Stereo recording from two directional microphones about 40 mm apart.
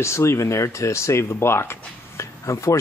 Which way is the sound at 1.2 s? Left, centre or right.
Left.